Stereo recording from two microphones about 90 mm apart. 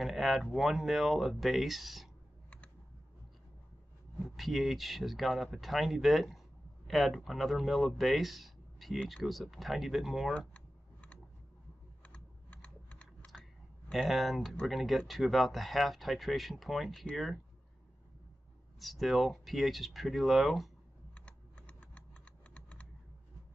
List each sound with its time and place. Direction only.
0.0 s speech: centre (ahead or behind)
4.2 s speech: centre (ahead or behind)
10.5 s typing: 15° left (ahead or behind)
13.9 s speech: centre (ahead or behind)
18.8 s speech: centre (ahead or behind)
21.1 s typing: 15° left (ahead or behind)